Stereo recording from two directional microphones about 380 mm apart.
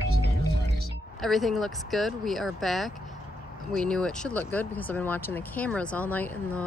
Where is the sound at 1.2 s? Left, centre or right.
Centre.